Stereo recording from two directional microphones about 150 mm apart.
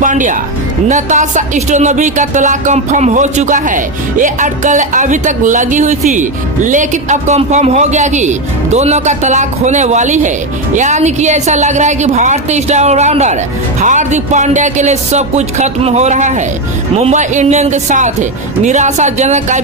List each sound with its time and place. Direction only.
0.0 s speech: 60° right (ahead or behind)